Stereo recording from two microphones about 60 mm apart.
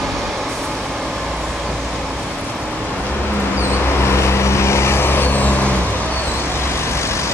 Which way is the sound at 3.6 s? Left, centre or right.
Left.